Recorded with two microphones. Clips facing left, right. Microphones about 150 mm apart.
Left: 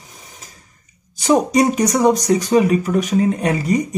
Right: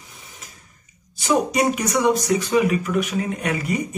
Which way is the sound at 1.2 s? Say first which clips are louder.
Left 5 dB; 35° left (ahead or behind).